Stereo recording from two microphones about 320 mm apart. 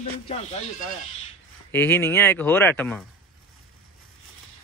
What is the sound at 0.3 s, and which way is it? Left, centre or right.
Speech, centre.